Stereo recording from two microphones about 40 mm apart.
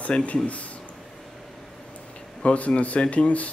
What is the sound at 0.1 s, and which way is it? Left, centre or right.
Speech, left.